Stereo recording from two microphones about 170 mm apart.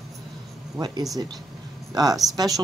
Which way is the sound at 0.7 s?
25° right (ahead or behind).